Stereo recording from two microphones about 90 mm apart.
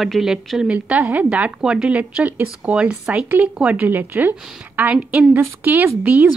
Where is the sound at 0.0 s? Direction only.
5° right (ahead or behind); by 4.9 s 20° right (ahead or behind).